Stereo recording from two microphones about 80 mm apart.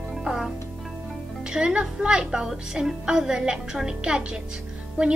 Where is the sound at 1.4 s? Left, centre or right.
Centre.